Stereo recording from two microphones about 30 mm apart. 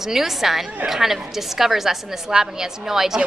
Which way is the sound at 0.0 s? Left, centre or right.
Centre.